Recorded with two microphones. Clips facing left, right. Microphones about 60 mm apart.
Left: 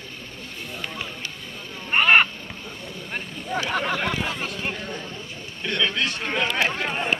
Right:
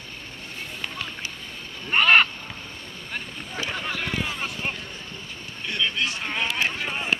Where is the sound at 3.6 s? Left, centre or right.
Left.